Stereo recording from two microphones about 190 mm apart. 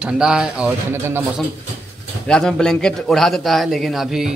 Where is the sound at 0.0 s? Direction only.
5° right (ahead or behind).